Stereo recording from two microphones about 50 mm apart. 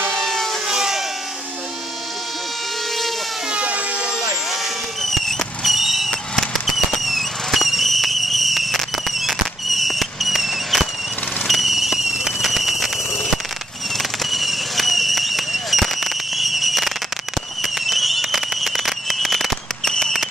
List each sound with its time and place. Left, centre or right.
0.1 s civil defense siren: centre
0.7 s vehicle: centre
3.5 s vehicle: right
5.0 s fireworks: centre
6.3 s fireworks: centre
19.8 s fireworks: centre